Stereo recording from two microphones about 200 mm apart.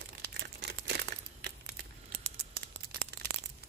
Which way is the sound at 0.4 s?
55° right (ahead or behind).